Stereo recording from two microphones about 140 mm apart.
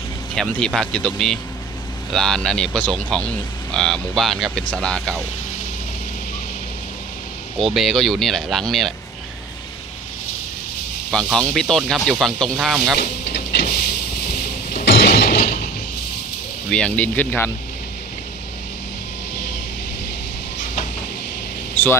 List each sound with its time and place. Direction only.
0.4 s speech: 5° left (ahead or behind)
7.5 s speech: centre (ahead or behind)
11.1 s speech: 5° left (ahead or behind)
13.7 s a sound: 90° left
16.7 s speech: 10° left (ahead or behind)
21.8 s a sound: 15° left (ahead or behind)